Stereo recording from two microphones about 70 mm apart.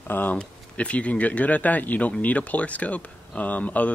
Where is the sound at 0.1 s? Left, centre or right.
Left.